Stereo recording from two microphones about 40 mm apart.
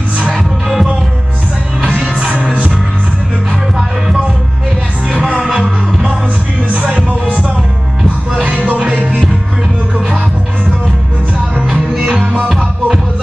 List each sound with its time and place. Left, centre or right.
1.8 s music: right
5.1 s music: right
5.4 s music: centre
7.1 s music: right
8.3 s a sound: right
8.5 s music: right
12.4 s music: centre